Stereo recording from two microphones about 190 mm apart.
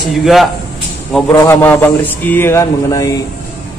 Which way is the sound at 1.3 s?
15° left (ahead or behind).